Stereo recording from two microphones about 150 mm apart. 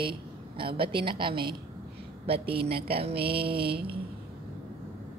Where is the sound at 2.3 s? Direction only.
90° right.